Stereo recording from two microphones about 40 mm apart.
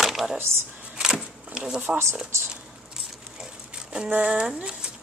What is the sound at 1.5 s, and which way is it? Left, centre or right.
Speech, centre.